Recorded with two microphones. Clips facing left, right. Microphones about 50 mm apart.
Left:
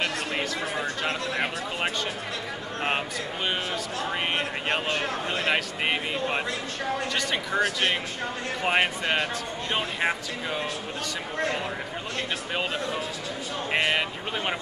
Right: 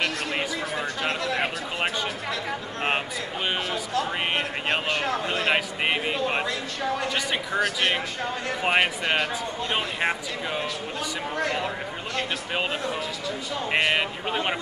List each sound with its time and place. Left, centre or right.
4.8 s a sound: right
7.2 s speech: centre
8.6 s speech: centre
9.7 s speech: centre
13.9 s speech: centre